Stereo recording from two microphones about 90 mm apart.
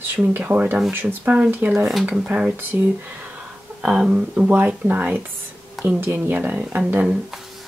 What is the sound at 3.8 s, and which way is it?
Speech, 10° right (ahead or behind).